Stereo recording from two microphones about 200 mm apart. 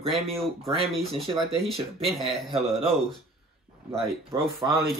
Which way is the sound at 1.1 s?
30° right (ahead or behind).